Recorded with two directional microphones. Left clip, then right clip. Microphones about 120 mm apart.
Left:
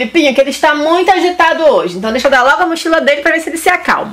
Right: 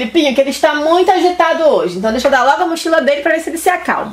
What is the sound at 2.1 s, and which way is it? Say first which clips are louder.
Speech: left 3 dB; 40° left (ahead or behind).